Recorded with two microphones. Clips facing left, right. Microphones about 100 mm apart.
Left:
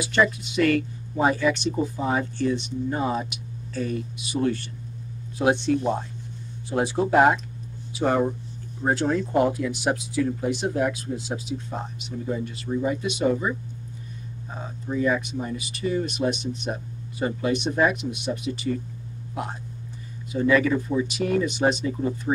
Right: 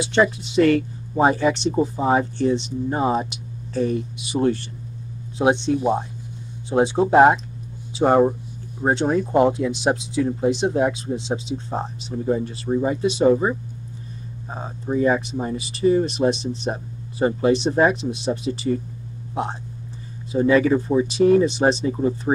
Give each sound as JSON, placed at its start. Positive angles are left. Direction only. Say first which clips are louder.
{"t": 0.0, "sound": "speech", "louder": "right 3 dB", "side_deg": -30}